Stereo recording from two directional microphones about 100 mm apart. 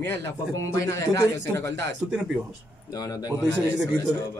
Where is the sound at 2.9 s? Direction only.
40° left (ahead or behind).